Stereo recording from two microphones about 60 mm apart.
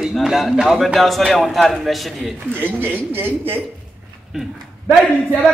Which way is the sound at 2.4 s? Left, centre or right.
Right.